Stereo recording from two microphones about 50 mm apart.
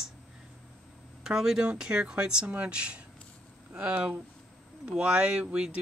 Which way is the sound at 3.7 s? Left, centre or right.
Right.